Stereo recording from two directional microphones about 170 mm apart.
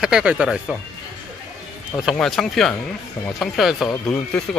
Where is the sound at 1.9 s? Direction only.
5° left (ahead or behind).